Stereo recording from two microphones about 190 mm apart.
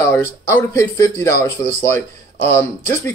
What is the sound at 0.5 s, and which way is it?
Speech, 15° left (ahead or behind).